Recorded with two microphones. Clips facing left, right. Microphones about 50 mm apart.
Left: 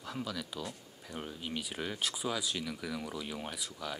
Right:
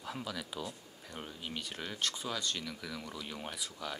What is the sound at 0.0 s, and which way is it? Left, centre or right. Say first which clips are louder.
Speech: left 1 dB; centre.